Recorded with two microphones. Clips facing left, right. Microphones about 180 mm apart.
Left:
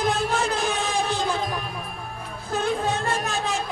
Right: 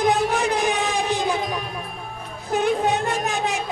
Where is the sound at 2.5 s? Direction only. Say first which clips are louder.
Right 4 dB; 15° right (ahead or behind).